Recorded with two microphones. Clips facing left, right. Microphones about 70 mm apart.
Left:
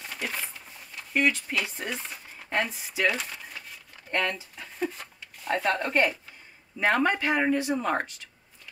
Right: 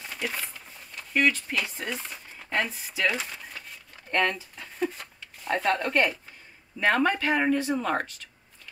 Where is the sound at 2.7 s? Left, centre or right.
Centre.